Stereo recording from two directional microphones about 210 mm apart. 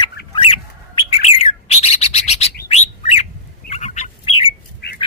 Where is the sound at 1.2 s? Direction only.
30° left (ahead or behind).